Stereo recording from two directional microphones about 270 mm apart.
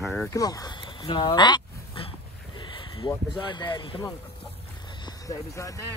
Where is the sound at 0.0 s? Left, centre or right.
Centre.